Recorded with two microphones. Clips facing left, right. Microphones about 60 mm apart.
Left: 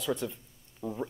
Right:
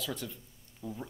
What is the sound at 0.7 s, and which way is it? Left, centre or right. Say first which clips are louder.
Speech: left 6 dB; left.